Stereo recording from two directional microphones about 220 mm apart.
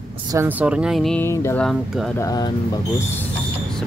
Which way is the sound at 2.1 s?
15° left (ahead or behind).